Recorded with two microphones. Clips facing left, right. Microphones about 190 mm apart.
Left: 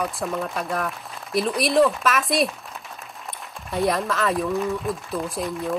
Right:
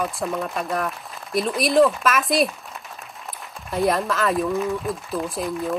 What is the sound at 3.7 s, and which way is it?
Speech, centre (ahead or behind).